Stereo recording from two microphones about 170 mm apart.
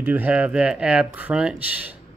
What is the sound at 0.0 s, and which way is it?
Speech, 10° right (ahead or behind).